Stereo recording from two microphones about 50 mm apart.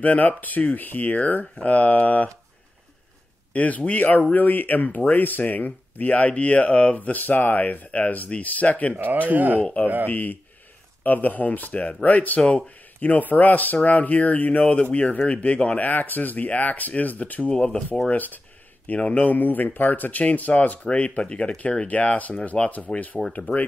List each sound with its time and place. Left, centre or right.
0.0 s speech: left
3.5 s speech: left
8.9 s speech: right
10.0 s speech: left